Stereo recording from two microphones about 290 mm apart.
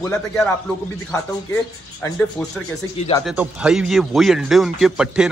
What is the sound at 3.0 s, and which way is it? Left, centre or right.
Speech, centre.